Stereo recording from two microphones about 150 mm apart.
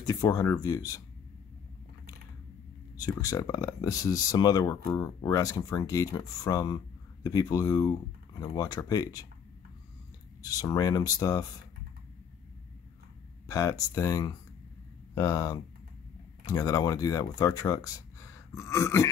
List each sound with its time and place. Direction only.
0.0 s speech: 25° left (ahead or behind)
3.0 s speech: 25° left (ahead or behind)
10.4 s speech: 25° left (ahead or behind)
13.5 s speech: 20° left (ahead or behind)